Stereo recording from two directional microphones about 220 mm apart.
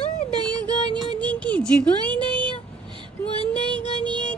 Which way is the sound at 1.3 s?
5° left (ahead or behind).